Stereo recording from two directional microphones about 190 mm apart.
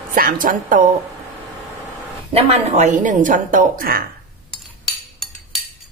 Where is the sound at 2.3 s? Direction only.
35° right (ahead or behind); by 4.0 s 50° right (ahead or behind).